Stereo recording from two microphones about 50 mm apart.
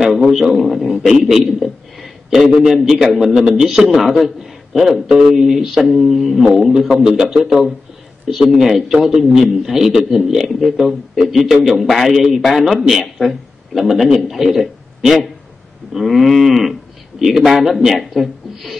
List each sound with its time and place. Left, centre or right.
0.1 s a man's voice: centre
3.2 s a man's voice: centre
3.9 s a man's voice: centre